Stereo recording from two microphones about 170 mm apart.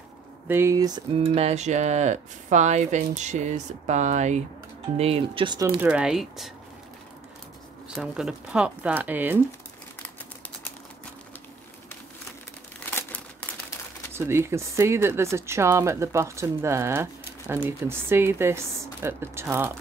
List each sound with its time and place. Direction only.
0.5 s speech: 15° right (ahead or behind)
1.1 s speech: 35° right (ahead or behind)
5.8 s speech: 5° right (ahead or behind)
7.9 s speech: 5° right (ahead or behind)
12.9 s crumpling: 10° left (ahead or behind)
14.1 s speech: 15° right (ahead or behind)